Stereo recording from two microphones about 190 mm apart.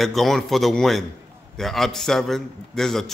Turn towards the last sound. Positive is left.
turn(degrees=0)  # may be behind; listen again after turning